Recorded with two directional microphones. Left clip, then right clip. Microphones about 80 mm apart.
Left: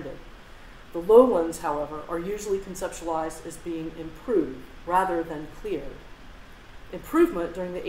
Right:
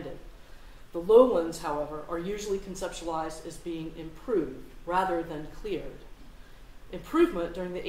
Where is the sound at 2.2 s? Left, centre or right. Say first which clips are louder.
Left 4 dB; left.